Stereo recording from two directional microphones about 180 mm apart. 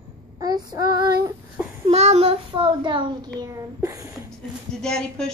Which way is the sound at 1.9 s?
35° right (ahead or behind).